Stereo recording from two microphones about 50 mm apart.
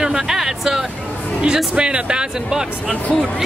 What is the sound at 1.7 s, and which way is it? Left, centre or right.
Speech, centre.